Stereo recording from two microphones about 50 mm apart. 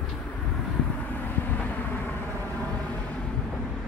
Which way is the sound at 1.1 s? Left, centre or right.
Left.